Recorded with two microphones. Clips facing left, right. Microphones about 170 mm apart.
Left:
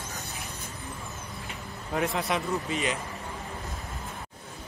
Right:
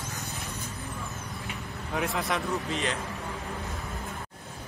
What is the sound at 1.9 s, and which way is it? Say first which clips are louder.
Speech: left 2 dB; centre (ahead or behind).